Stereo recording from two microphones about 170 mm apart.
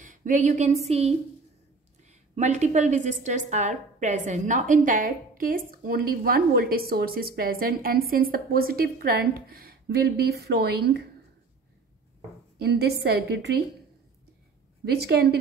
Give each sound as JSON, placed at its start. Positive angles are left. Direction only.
{"t": 0.0, "sound": "a woman's voice", "side_deg": -50}
{"t": 2.3, "sound": "a woman's voice", "side_deg": -45}
{"t": 12.5, "sound": "a woman's voice", "side_deg": -70}
{"t": 14.9, "sound": "a woman's voice", "side_deg": -70}